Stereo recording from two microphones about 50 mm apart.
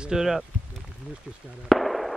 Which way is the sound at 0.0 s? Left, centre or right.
Centre.